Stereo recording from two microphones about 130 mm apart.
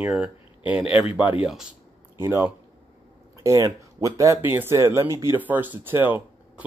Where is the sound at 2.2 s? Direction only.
20° right (ahead or behind).